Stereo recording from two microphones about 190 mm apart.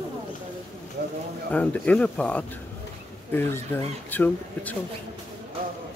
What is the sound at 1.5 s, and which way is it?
Speech, 10° left (ahead or behind).